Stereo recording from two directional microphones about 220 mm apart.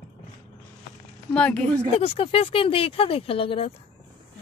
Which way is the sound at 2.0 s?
25° left (ahead or behind).